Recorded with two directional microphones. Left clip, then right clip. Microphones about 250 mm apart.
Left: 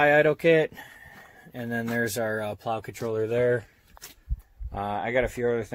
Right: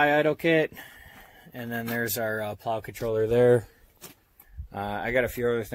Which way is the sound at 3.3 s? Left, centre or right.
Right.